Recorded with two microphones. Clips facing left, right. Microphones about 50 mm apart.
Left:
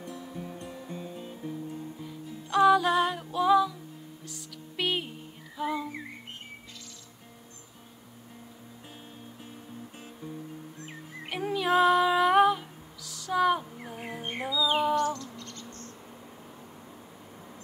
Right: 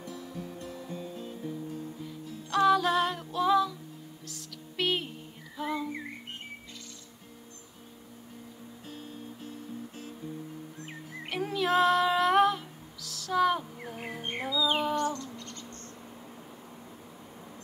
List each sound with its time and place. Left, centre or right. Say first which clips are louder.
0.7 s music: even; centre
8.8 s music: right 5 dB; centre
11.2 s music: left 1 dB; centre